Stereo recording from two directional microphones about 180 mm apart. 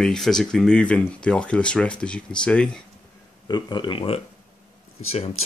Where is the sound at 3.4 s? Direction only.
25° left (ahead or behind).